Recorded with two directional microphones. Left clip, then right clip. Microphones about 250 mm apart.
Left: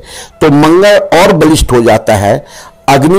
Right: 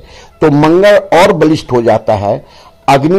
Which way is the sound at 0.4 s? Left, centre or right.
Left.